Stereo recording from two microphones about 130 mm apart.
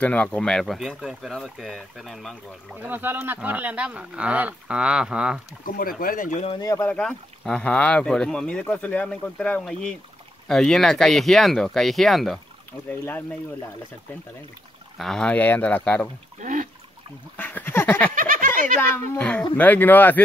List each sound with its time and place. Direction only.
0.0 s speech: 10° left (ahead or behind)
2.7 s speech: 15° right (ahead or behind)
5.8 s speech: 90° left
6.6 s speech: 25° left (ahead or behind)
6.9 s speech: 5° left (ahead or behind)
12.7 s speech: 10° left (ahead or behind)
15.0 s speech: 5° left (ahead or behind)
16.3 s speech: 80° right
17.4 s speech: 15° left (ahead or behind)
18.1 s a sound: 90° right
18.8 s speech: 10° left (ahead or behind)